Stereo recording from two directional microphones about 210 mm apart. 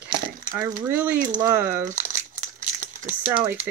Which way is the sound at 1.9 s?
35° right (ahead or behind).